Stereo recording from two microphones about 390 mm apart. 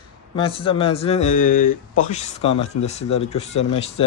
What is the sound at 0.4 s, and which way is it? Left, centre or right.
Speech, centre.